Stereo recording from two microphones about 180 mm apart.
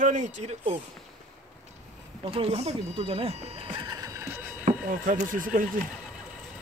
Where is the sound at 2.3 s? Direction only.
35° right (ahead or behind); by 4.4 s 15° right (ahead or behind).